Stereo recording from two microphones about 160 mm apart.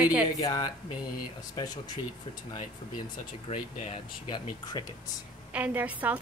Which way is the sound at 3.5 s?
35° left (ahead or behind).